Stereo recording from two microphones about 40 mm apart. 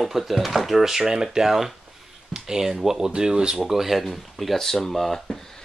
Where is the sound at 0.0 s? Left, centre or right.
Centre.